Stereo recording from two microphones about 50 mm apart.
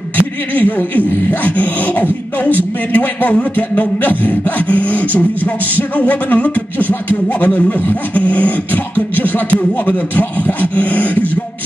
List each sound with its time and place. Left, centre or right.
0.6 s speech: left